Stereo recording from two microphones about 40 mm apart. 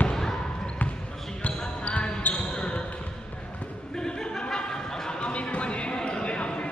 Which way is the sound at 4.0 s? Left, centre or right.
Centre.